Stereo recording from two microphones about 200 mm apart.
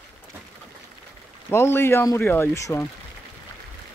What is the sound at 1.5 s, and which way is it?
Speech, 10° left (ahead or behind).